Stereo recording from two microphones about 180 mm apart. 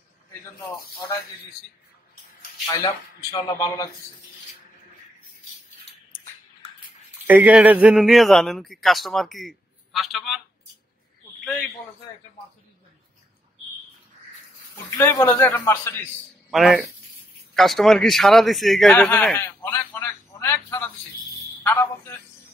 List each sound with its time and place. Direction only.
2.6 s speech: 20° left (ahead or behind)
7.2 s a man's voice: 10° right (ahead or behind)
11.4 s a man's voice: centre (ahead or behind)
15.0 s a man's voice: 10° left (ahead or behind)
16.4 s a man's voice: centre (ahead or behind); by 22.2 s 15° left (ahead or behind)